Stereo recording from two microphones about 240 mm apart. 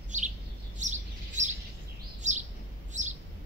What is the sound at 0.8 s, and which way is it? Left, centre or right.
Chirp, right.